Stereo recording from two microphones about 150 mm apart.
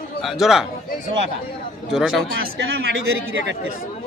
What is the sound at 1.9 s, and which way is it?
Speech, 5° right (ahead or behind).